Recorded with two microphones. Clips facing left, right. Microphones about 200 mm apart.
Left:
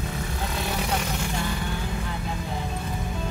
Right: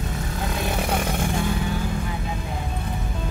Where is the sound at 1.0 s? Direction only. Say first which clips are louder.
Right 4 dB; 55° right (ahead or behind).